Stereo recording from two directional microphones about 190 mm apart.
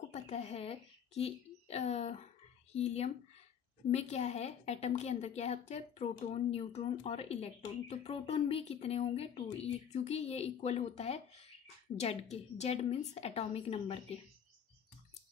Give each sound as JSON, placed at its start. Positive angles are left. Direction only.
{"t": 0.1, "sound": "a woman's voice", "side_deg": 35}